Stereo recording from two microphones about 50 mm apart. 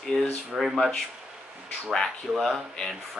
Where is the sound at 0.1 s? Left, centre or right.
Centre.